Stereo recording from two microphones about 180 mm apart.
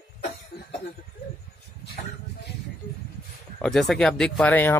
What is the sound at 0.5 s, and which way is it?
Cough, 70° left (ahead or behind).